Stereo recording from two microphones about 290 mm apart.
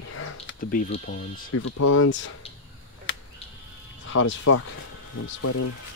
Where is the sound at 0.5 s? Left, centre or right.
Left.